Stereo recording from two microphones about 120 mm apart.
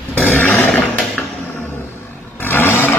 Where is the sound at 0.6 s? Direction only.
Centre (ahead or behind).